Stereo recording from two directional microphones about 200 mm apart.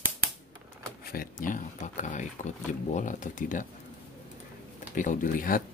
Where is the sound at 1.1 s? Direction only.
45° left (ahead or behind).